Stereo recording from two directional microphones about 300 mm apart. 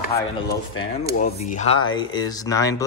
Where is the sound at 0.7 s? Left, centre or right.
Left.